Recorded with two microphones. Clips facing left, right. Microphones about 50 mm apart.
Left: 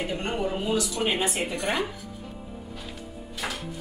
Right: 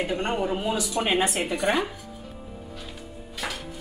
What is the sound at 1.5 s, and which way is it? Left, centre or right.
Speech, centre.